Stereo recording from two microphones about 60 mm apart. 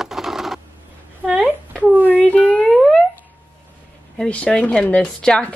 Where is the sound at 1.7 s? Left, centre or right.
Left.